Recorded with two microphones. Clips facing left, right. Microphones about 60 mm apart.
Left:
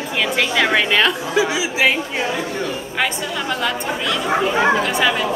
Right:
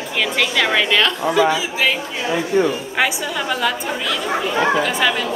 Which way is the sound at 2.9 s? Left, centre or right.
Centre.